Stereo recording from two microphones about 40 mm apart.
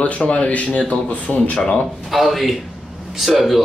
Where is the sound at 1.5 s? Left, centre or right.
Left.